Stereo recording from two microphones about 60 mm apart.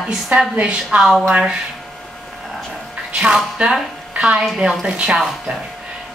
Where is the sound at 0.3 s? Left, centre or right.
Right.